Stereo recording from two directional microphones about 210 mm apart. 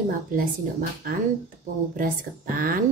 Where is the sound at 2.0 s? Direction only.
40° right (ahead or behind).